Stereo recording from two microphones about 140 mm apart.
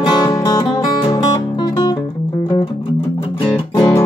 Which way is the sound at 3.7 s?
30° left (ahead or behind).